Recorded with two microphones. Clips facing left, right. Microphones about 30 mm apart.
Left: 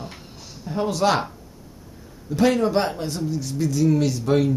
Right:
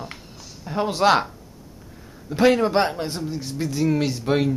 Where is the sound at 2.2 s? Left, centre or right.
Right.